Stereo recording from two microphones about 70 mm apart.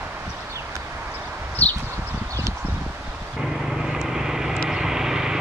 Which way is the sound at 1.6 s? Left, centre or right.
Left.